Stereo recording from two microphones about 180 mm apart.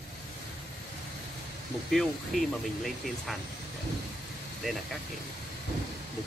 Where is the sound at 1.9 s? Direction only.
Centre (ahead or behind).